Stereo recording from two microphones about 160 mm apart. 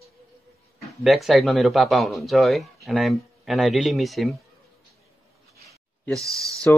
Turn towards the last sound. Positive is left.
turn(degrees=10)  # may be behind; listen again after turning